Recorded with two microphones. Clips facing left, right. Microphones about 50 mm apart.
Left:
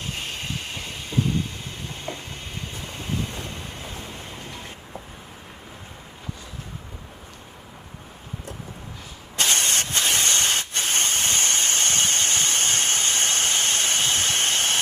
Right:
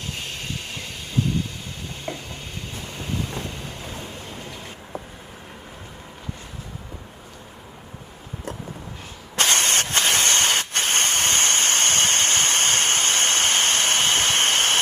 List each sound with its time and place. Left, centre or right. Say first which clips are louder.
9.4 s vehicle: right 3 dB; right